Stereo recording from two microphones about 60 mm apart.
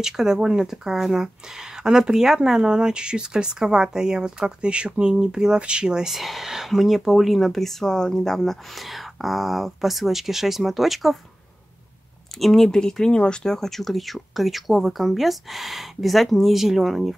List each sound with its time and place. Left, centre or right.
0.0 s speech: centre
12.4 s speech: centre